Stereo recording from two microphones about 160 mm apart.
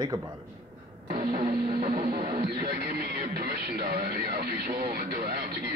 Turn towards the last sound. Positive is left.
turn(degrees=-75)  # may be behind; listen again after turning